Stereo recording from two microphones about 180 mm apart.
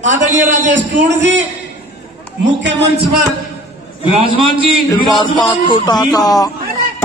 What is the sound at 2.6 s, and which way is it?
Speech, 60° right (ahead or behind).